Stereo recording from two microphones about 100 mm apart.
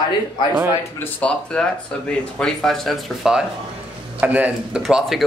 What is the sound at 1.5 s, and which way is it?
Speech, 10° left (ahead or behind).